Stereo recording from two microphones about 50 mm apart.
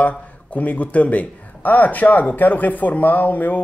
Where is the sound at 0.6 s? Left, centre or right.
Left.